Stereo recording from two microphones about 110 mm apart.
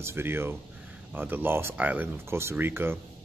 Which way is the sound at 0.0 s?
20° right (ahead or behind).